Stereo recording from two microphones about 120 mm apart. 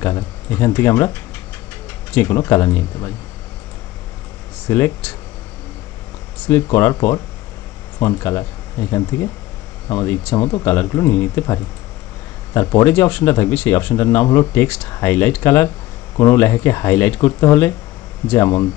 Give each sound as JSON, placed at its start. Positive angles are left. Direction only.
{"t": 0.0, "sound": "speech", "side_deg": 20}
{"t": 2.1, "sound": "speech", "side_deg": 20}
{"t": 4.6, "sound": "speech", "side_deg": 20}
{"t": 6.4, "sound": "speech", "side_deg": 20}
{"t": 10.3, "sound": "speech", "side_deg": 30}
{"t": 10.6, "sound": "speech", "side_deg": 20}